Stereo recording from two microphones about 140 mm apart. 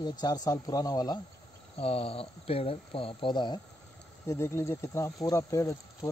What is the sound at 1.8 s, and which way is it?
Speech, 45° left (ahead or behind).